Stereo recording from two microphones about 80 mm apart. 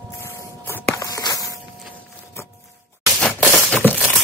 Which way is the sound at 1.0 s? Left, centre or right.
Left.